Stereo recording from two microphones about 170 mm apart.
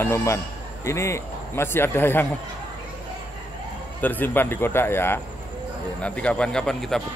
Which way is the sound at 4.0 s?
10° left (ahead or behind).